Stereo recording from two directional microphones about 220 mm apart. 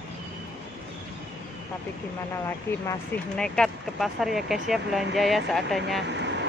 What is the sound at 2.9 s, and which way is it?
Speech, 5° left (ahead or behind).